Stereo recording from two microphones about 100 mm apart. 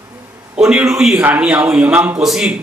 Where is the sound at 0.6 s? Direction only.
10° right (ahead or behind).